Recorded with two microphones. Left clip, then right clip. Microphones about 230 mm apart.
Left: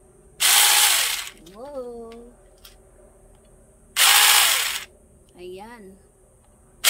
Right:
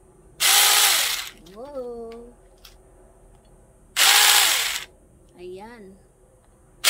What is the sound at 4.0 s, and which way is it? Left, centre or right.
Ratchet, centre.